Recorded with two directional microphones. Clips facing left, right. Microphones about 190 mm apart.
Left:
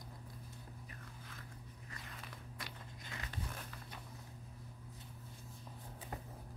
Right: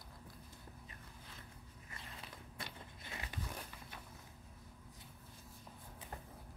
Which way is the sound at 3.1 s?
20° right (ahead or behind).